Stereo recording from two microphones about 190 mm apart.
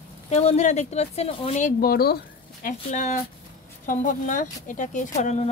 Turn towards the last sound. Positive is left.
turn(degrees=40)  # may be behind; listen again after turning